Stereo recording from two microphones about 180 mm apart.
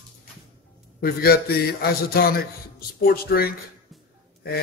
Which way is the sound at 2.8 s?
55° left (ahead or behind).